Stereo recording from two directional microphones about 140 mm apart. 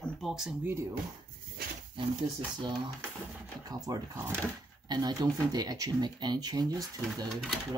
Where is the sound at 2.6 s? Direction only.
35° right (ahead or behind).